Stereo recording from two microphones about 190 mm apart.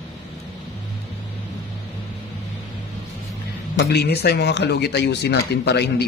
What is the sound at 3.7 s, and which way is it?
Speech, 60° left (ahead or behind).